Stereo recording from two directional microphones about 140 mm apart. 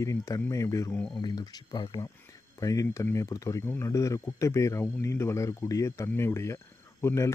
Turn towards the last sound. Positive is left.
turn(degrees=20)  # may be behind; listen again after turning